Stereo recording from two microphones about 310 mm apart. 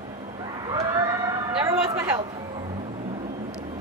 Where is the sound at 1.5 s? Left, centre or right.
Centre.